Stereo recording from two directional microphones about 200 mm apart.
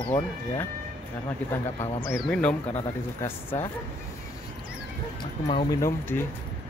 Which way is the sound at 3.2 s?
10° left (ahead or behind).